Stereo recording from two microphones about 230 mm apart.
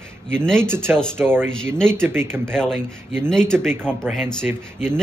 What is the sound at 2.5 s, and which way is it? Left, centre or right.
A man's voice, centre.